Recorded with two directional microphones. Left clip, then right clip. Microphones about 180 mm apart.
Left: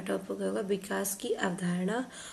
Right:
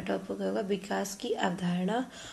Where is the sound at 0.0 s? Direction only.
30° left (ahead or behind).